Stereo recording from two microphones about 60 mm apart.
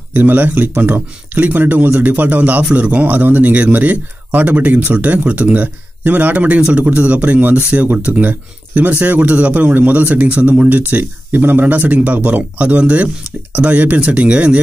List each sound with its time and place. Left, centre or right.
0.1 s speech: right